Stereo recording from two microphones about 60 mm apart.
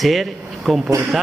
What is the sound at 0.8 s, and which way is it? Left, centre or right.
Speech, right.